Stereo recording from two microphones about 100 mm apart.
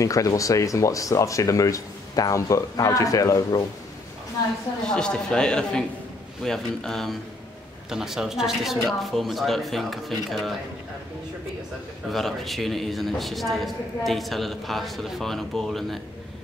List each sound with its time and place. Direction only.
0.0 s speech: 35° left (ahead or behind)
4.8 s a man's voice: 10° left (ahead or behind)
12.1 s a man's voice: centre (ahead or behind)